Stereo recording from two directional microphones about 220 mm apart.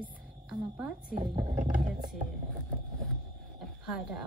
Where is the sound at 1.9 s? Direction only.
40° right (ahead or behind).